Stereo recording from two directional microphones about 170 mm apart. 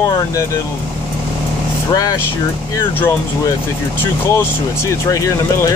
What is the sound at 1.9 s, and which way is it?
Speech, 20° left (ahead or behind).